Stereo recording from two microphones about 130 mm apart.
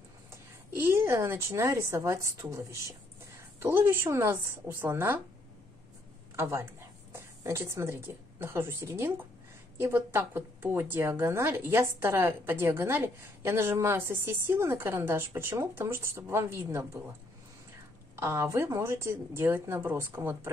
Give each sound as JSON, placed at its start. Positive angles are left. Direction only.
{"t": 0.7, "sound": "a woman's voice", "side_deg": -20}
{"t": 6.3, "sound": "a woman's voice", "side_deg": -20}
{"t": 18.1, "sound": "a woman's voice", "side_deg": -20}